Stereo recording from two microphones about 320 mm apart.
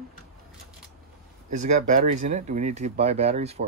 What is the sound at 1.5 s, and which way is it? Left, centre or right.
Speech, right.